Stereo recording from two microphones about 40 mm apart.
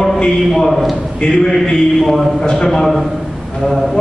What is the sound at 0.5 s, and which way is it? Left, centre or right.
A man's voice, centre.